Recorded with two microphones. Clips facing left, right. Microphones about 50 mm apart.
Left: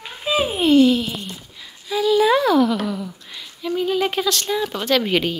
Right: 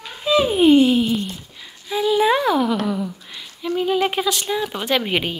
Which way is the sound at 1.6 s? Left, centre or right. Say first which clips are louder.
Left 1 dB; centre.